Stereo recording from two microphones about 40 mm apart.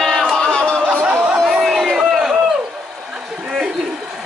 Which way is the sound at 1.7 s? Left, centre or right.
Centre.